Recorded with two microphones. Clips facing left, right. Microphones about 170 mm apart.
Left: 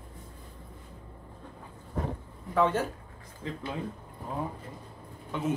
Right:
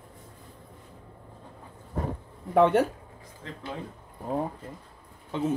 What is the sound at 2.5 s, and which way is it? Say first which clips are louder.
Speech: right 6 dB; 65° right (ahead or behind).